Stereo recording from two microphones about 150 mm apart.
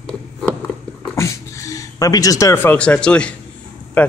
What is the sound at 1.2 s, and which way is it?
Speech, 20° left (ahead or behind).